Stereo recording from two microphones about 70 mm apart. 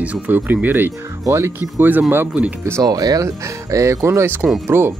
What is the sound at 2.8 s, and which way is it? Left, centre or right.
Speech, right.